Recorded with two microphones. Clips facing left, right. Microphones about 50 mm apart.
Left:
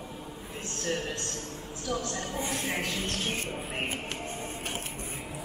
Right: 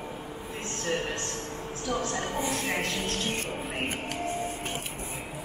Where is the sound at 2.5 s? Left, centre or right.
Centre.